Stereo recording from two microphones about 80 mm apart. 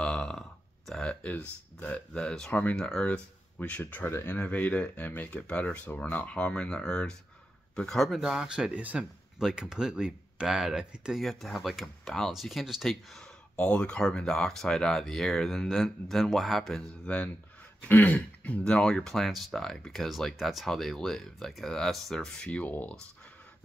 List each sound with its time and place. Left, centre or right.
0.0 s burping: centre
1.8 s speech: centre
3.1 s speech: centre
4.1 s speech: left
4.4 s speech: centre
13.6 s speech: centre